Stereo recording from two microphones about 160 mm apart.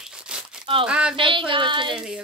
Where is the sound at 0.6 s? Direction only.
30° right (ahead or behind).